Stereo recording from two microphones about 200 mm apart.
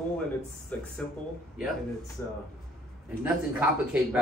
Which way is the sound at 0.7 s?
5° left (ahead or behind).